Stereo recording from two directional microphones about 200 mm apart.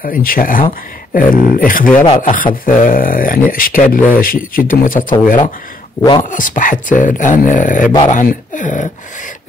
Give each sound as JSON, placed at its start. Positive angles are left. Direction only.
{"t": 0.0, "sound": "speech", "side_deg": 45}
{"t": 6.2, "sound": "speech", "side_deg": 40}